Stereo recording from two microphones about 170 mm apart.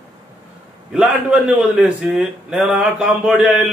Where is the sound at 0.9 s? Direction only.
5° right (ahead or behind).